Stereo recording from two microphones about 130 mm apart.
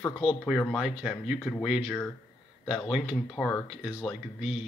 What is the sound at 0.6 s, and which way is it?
Speech, centre (ahead or behind).